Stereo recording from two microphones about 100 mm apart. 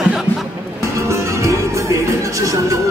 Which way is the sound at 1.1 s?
30° right (ahead or behind).